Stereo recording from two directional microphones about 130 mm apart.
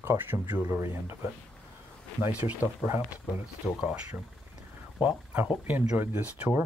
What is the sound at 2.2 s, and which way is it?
Speech, 15° right (ahead or behind).